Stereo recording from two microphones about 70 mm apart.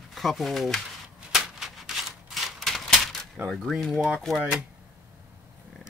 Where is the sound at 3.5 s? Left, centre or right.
Centre.